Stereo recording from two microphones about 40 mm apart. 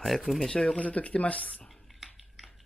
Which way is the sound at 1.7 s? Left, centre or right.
Centre.